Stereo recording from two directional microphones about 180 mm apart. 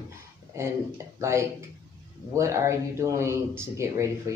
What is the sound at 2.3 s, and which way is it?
A woman's voice, 15° right (ahead or behind).